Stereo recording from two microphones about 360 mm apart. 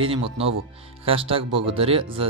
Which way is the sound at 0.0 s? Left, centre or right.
Centre.